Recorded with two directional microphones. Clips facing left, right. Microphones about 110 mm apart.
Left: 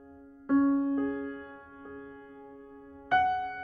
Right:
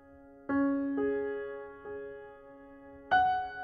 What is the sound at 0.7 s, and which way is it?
Music, 20° left (ahead or behind).